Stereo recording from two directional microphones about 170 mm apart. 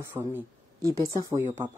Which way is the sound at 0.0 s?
15° right (ahead or behind).